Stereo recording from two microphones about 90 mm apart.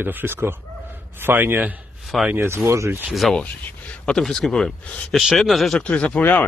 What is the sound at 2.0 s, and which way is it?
Speech, centre (ahead or behind).